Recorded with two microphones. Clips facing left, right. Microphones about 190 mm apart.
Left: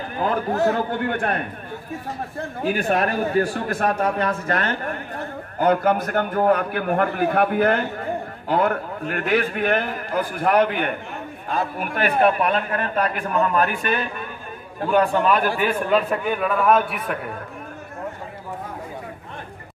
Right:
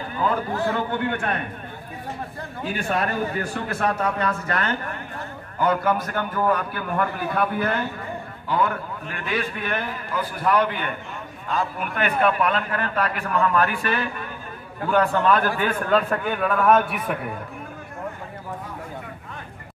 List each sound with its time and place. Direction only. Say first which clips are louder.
0.2 s a man's voice: left 3 dB; 45° left (ahead or behind)
2.8 s a man's voice: left 2 dB; 40° left (ahead or behind)
12.5 s a man's voice: left 2 dB; 25° left (ahead or behind); by 17.0 s 5° left (ahead or behind)